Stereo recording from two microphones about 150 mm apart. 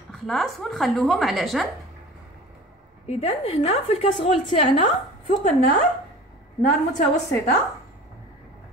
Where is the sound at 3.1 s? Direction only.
40° left (ahead or behind).